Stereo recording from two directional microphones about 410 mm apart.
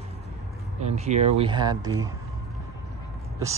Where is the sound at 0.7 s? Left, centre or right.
Centre.